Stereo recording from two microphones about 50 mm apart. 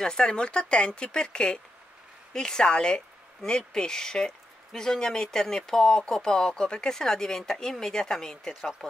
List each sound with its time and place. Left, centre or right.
0.0 s speech: centre